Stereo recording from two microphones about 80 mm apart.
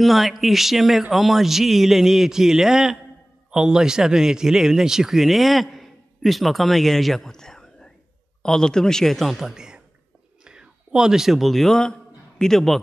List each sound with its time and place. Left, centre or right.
0.0 s a man's voice: centre